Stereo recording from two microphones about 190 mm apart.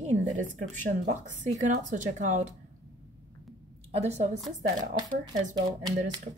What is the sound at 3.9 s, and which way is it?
Speech, 35° right (ahead or behind).